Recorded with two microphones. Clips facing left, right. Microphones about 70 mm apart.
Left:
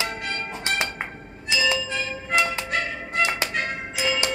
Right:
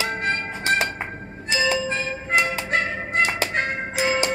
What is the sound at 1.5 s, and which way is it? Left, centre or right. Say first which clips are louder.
Music: right 2 dB; right.